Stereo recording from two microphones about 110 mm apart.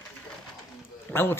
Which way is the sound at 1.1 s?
20° left (ahead or behind).